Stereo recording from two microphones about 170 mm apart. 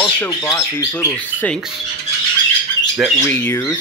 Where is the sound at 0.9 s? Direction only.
10° left (ahead or behind).